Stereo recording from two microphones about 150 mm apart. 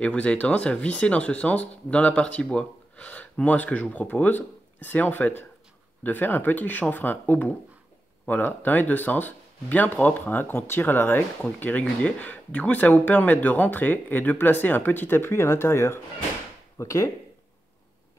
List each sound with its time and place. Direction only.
0.0 s speech: 10° left (ahead or behind)